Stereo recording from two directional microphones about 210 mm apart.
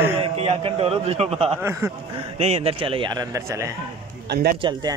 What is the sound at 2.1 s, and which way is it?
A man's voice, 30° right (ahead or behind).